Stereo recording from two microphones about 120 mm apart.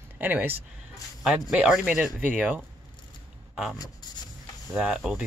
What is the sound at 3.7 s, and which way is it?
Speech, 35° left (ahead or behind).